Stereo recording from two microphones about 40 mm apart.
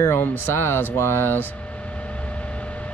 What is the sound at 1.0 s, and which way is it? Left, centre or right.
Speech, left.